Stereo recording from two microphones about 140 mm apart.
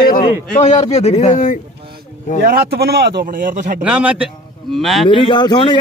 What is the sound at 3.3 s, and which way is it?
Speech, 75° right (ahead or behind).